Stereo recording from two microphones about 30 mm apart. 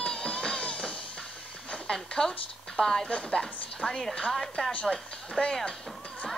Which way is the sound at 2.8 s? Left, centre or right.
Centre.